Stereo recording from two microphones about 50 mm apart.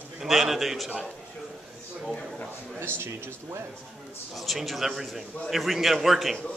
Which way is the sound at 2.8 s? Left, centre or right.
Right.